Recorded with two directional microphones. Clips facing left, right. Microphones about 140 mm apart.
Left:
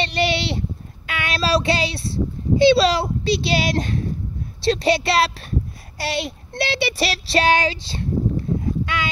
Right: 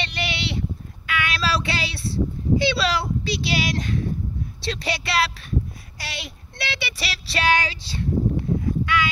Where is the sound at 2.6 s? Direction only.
30° left (ahead or behind).